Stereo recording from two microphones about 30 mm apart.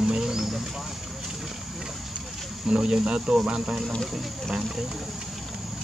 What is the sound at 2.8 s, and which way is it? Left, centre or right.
Speech, centre.